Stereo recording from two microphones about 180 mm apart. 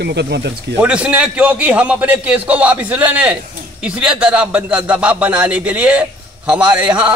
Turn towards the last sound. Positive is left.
turn(degrees=-5)  # may be behind; listen again after turning